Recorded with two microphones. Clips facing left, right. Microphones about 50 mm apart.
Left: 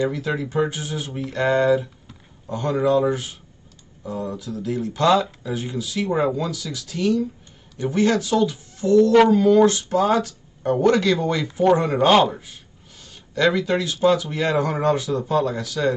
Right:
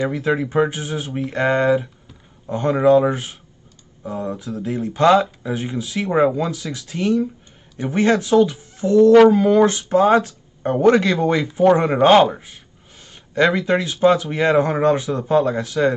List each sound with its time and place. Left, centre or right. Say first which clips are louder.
0.1 s speech: right 5 dB; right